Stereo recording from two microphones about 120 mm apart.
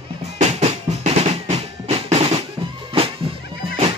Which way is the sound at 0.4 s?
65° right (ahead or behind).